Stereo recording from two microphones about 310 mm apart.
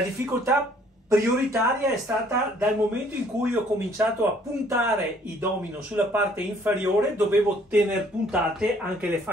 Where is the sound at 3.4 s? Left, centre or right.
Centre.